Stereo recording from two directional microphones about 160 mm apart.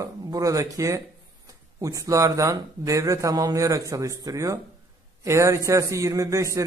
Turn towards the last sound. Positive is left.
turn(degrees=-20)  # may be behind; listen again after turning